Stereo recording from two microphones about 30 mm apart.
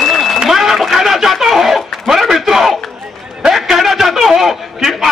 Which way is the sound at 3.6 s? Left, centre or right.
Centre.